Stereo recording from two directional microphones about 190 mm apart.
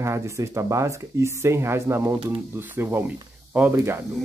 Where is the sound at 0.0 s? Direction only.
15° right (ahead or behind).